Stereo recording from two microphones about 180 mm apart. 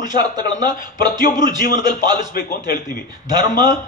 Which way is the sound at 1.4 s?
50° left (ahead or behind).